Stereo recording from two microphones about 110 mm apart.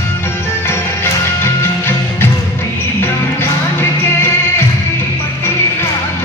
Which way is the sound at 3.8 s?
20° left (ahead or behind).